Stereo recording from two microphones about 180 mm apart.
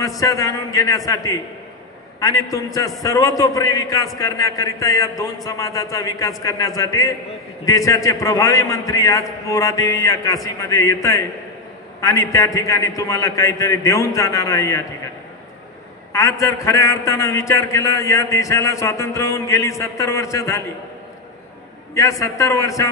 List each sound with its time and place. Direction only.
0.2 s a man's voice: 15° left (ahead or behind)
16.1 s a man's voice: 15° left (ahead or behind)
22.2 s a man's voice: 15° left (ahead or behind)